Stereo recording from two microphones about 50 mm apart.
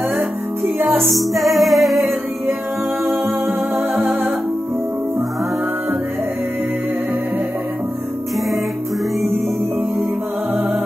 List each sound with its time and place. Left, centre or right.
1.0 s music: centre
4.0 s music: right